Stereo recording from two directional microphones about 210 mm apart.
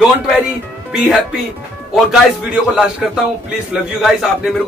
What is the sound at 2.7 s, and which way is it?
Speech, centre (ahead or behind).